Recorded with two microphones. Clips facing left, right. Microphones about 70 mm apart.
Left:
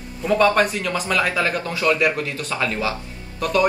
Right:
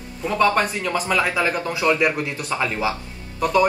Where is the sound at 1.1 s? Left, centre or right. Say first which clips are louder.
Even; centre.